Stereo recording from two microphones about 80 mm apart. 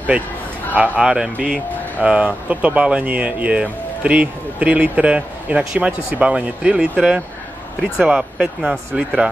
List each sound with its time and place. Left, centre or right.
0.7 s speech: centre